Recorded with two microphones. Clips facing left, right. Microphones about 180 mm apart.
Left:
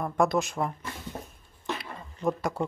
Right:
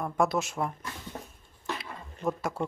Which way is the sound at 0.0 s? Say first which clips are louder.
Left 2 dB; 5° right (ahead or behind).